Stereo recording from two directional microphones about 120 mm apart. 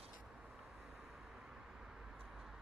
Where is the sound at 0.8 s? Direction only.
5° right (ahead or behind).